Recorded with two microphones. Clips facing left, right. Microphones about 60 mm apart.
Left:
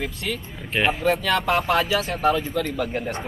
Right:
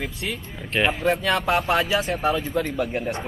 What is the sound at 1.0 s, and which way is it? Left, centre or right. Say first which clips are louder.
Speech: even; centre.